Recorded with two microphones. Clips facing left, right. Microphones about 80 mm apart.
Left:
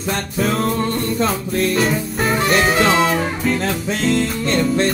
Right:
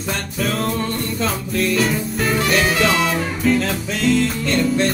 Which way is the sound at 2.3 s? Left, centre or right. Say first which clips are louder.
Left 3 dB; left.